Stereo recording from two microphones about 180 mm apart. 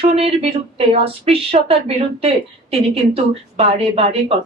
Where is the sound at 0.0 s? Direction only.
35° right (ahead or behind).